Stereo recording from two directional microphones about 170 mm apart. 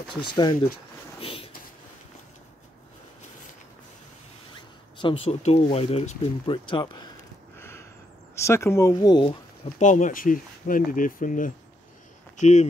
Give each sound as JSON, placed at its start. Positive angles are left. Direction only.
{"t": 0.4, "sound": "speech", "side_deg": 25}
{"t": 4.9, "sound": "speech", "side_deg": 30}
{"t": 7.5, "sound": "gasp", "side_deg": 15}
{"t": 8.4, "sound": "speech", "side_deg": 15}
{"t": 8.9, "sound": "speech", "side_deg": 25}
{"t": 9.8, "sound": "speech", "side_deg": 45}